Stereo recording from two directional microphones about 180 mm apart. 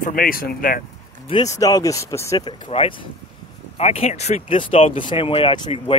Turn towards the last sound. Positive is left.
turn(degrees=25)  # may be behind; listen again after turning